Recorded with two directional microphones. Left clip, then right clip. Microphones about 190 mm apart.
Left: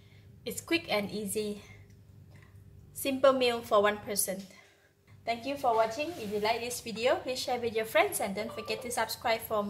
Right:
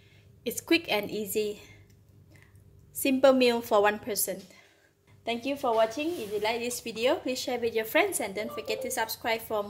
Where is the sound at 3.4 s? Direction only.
45° right (ahead or behind).